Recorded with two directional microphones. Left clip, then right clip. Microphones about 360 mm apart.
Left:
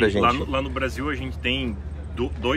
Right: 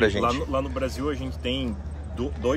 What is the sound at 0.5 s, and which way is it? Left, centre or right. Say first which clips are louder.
Speech: left 1 dB; centre.